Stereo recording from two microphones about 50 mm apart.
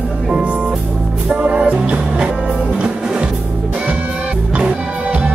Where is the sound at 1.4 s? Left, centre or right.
Right.